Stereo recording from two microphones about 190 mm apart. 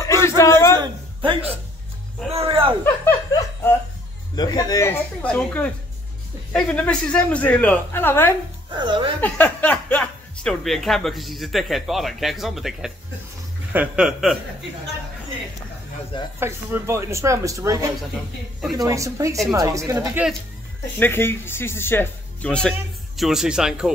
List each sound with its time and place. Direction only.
0.0 s a sound: 15° left (ahead or behind)
0.7 s a sound: 25° right (ahead or behind)
2.3 s speech: 30° right (ahead or behind)
2.8 s speech: 10° left (ahead or behind)
8.6 s speech: 25° right (ahead or behind)
9.2 s speech: 10° left (ahead or behind)
16.3 s speech: 15° right (ahead or behind)
20.2 s speech: 5° right (ahead or behind)
21.0 s speech: 10° left (ahead or behind)